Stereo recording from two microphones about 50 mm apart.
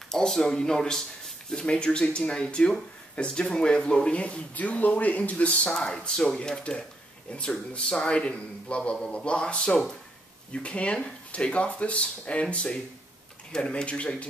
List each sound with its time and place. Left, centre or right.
0.1 s speech: centre; by 5.7 s left
5.7 s speech: centre